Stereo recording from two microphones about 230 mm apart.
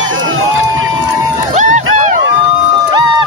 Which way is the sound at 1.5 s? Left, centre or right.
Right.